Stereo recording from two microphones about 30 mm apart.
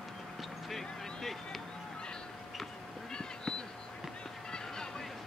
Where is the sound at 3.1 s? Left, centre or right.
Left.